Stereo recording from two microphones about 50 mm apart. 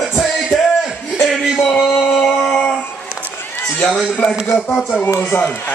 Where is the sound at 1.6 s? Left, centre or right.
Centre.